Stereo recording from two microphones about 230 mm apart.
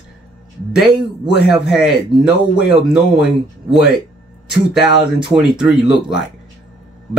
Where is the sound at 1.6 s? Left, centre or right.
Centre.